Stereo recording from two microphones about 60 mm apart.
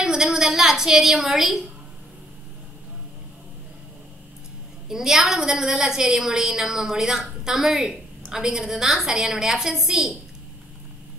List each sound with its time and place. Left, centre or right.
0.0 s a woman's voice: centre
4.8 s a woman's voice: centre